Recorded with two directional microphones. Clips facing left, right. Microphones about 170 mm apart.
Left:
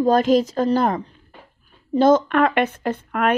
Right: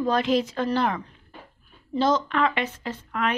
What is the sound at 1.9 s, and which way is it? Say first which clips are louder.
A woman's voice: left 7 dB; 50° left (ahead or behind).